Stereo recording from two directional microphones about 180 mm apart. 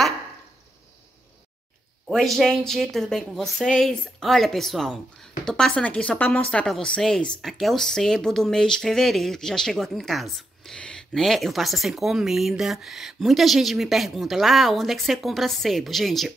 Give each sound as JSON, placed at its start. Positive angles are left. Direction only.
{"t": 2.0, "sound": "speech", "side_deg": 0}